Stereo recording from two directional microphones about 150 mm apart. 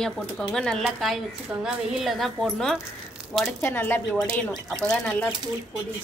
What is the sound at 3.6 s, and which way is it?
Speech, 15° left (ahead or behind).